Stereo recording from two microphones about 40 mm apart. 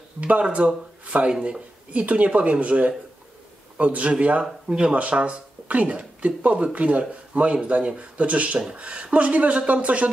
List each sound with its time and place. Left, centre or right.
0.2 s speech: right
1.9 s a man's voice: right